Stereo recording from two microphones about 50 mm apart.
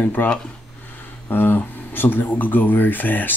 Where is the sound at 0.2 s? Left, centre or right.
Left.